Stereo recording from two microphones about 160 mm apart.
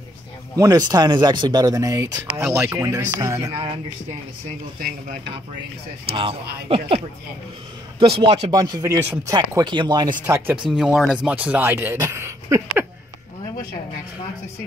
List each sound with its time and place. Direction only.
0.6 s speech: 25° right (ahead or behind)
4.7 s speech: 65° right (ahead or behind)
6.0 s speech: 35° right (ahead or behind)
8.0 s speech: 35° right (ahead or behind)
10.2 s speech: 10° right (ahead or behind)